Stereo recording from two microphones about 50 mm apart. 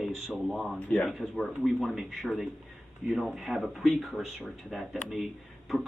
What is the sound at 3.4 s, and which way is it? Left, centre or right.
Speech, centre.